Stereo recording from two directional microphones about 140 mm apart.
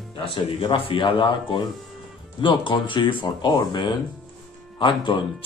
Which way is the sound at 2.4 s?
35° left (ahead or behind).